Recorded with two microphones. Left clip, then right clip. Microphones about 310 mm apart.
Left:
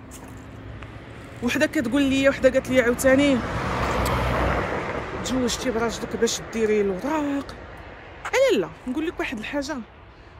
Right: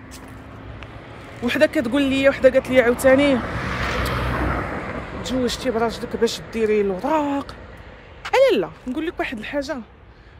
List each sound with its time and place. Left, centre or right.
1.4 s speech: centre
4.0 s a sound: left
5.2 s speech: centre